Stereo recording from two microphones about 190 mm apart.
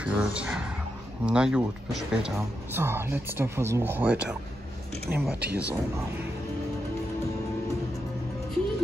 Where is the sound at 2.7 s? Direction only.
10° right (ahead or behind).